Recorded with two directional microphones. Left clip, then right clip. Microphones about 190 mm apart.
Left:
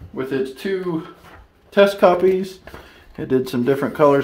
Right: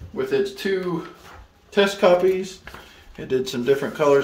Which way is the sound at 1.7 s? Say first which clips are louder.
Left 3 dB; 40° left (ahead or behind).